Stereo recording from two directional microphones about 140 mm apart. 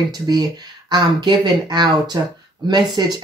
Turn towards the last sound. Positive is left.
turn(degrees=-30)  # may be behind; listen again after turning